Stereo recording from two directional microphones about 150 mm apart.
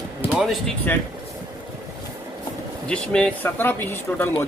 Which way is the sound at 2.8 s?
5° left (ahead or behind).